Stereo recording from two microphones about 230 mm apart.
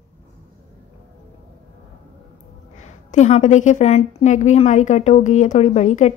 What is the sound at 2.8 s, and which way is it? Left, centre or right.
A woman's voice, left.